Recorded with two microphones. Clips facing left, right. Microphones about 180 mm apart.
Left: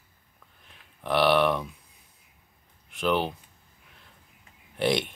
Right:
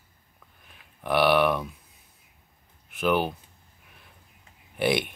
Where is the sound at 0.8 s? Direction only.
5° right (ahead or behind).